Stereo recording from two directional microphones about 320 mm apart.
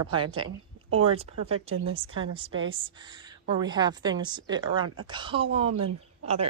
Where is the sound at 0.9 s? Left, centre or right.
Centre.